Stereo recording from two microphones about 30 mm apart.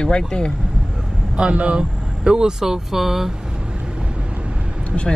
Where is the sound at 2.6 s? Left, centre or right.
Centre.